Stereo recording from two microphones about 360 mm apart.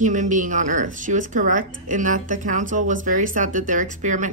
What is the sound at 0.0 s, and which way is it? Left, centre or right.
A woman's voice, right.